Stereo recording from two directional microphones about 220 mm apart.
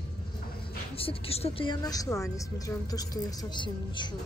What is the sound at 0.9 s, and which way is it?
A woman's voice, 25° left (ahead or behind).